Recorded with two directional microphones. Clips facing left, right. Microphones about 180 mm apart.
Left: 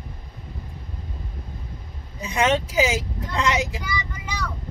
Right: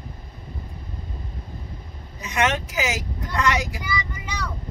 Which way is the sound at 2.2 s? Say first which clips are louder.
Left 2 dB; 30° left (ahead or behind).